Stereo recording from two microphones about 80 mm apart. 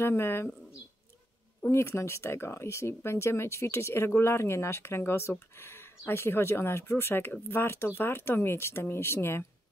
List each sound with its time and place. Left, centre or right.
0.0 s speech: left
1.7 s speech: left